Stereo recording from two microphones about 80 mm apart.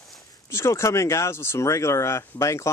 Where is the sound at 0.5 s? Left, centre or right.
Left.